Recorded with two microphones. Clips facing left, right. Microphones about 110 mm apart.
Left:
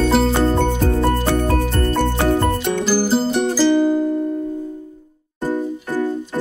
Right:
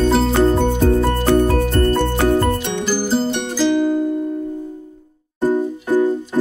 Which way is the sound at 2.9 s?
5° left (ahead or behind).